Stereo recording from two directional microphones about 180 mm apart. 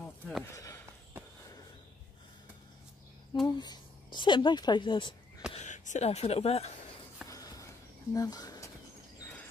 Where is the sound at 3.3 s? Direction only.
25° left (ahead or behind).